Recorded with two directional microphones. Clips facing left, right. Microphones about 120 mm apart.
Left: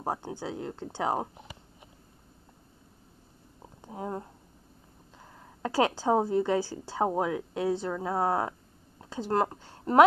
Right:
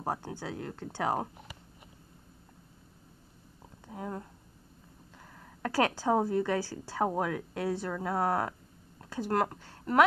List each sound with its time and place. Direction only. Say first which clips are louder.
0.0 s a woman's voice: left 2 dB; 20° left (ahead or behind)
3.8 s speech: left 3 dB; 25° left (ahead or behind)
5.6 s a woman's voice: left 2 dB; 20° left (ahead or behind)